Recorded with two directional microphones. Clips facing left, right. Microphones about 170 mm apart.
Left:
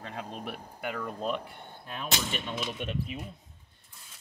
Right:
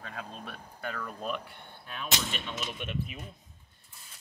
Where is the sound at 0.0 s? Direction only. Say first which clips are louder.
Left 4 dB; 20° left (ahead or behind).